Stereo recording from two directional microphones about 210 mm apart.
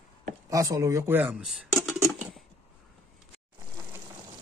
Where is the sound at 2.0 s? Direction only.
Centre (ahead or behind).